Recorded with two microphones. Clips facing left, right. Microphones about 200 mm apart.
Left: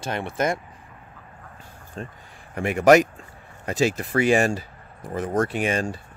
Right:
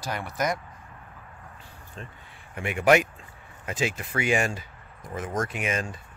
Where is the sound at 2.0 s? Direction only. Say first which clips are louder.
Left 8 dB; 40° left (ahead or behind).